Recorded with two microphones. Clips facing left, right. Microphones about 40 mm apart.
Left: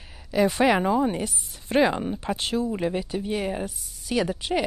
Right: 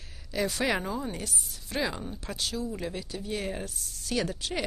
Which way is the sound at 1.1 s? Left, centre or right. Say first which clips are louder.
Left 6 dB; left.